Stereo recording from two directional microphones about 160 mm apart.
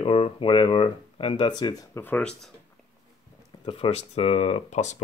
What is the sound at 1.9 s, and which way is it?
Speech, 10° left (ahead or behind).